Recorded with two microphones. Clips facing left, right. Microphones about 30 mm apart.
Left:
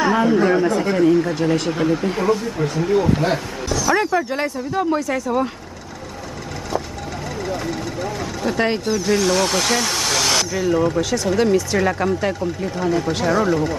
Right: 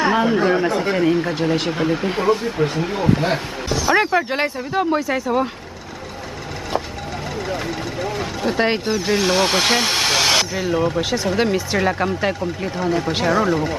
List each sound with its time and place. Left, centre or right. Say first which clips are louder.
0.0 s speech: left 1 dB; right
3.8 s speech: right 2 dB; right
7.4 s speech: left 2 dB; centre
12.8 s speech: even; centre